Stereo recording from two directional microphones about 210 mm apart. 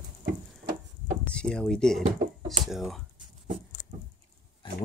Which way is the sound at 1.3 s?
5° left (ahead or behind).